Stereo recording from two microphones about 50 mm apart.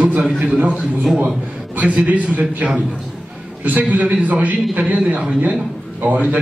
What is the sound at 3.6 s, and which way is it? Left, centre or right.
Speech, right.